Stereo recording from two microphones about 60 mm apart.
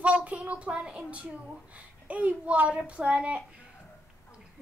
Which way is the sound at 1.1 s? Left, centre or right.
Right.